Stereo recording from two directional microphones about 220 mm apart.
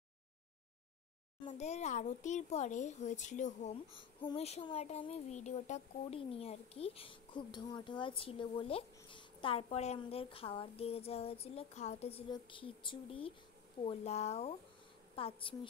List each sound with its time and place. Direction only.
1.4 s speech: 30° left (ahead or behind)